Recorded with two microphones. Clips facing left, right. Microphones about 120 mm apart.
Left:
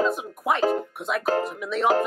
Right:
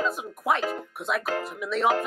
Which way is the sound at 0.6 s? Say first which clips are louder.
Left 7 dB; 35° left (ahead or behind).